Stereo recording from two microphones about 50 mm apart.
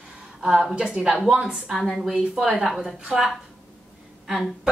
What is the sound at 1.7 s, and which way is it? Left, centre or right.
A woman's voice, centre.